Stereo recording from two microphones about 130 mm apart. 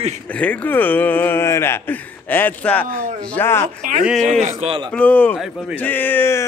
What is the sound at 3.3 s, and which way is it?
Speech, 15° left (ahead or behind).